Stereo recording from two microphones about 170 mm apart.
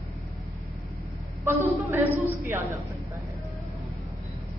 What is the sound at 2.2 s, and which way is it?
Speech, 15° right (ahead or behind).